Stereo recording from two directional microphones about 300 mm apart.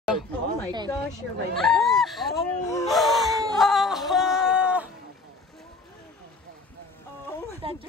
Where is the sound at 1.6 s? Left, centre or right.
Centre.